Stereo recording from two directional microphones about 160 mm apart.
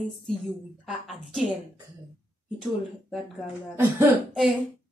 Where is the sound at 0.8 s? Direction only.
Centre (ahead or behind).